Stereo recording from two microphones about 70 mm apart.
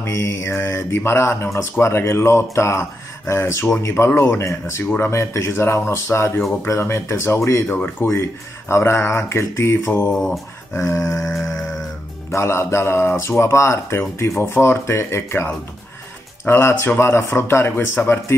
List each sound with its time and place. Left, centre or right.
0.0 s speech: left
7.6 s speech: left
10.1 s speech: centre
10.7 s dog: left
12.3 s speech: left
16.4 s speech: left